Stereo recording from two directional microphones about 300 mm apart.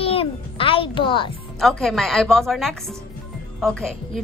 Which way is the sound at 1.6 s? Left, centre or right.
Centre.